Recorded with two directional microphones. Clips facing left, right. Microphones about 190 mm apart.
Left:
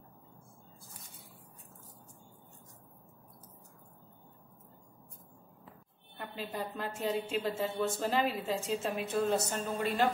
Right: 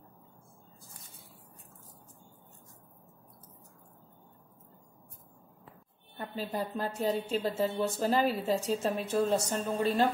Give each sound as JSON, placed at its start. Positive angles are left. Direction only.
{"t": 6.1, "sound": "a woman's voice", "side_deg": -40}